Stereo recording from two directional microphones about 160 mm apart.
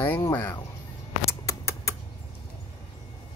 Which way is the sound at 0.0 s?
15° left (ahead or behind).